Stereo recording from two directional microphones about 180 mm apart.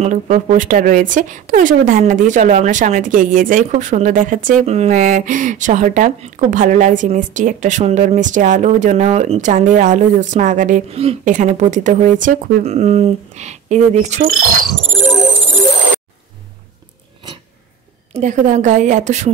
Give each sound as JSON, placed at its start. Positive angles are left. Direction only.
{"t": 0.0, "sound": "speech", "side_deg": -40}
{"t": 18.1, "sound": "speech", "side_deg": -45}